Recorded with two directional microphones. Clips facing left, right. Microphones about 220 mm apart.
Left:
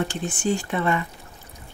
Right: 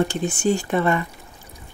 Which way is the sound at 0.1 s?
40° right (ahead or behind).